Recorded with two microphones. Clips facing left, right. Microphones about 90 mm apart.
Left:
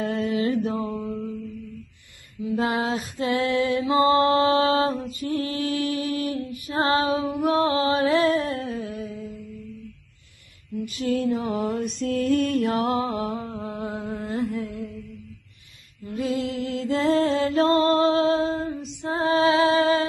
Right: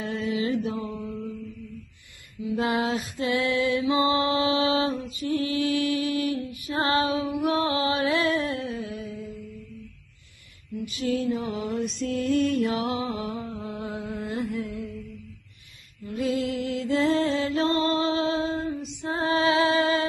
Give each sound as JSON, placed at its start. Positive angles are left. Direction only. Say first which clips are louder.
{"t": 0.0, "sound": "mantra", "louder": "left 4 dB", "side_deg": 50}
{"t": 2.5, "sound": "mantra", "louder": "left 1 dB", "side_deg": 35}
{"t": 10.8, "sound": "mantra", "louder": "left 2 dB", "side_deg": 45}
{"t": 13.4, "sound": "a sound", "louder": "left 2 dB", "side_deg": 30}
{"t": 16.1, "sound": "music", "louder": "even", "side_deg": 35}